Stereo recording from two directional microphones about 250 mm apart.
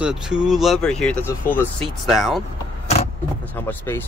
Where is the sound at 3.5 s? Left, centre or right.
Centre.